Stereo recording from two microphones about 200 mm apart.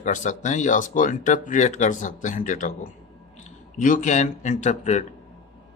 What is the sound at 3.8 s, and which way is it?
Speech, 40° left (ahead or behind).